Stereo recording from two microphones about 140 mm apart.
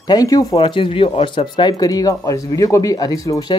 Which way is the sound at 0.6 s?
35° left (ahead or behind).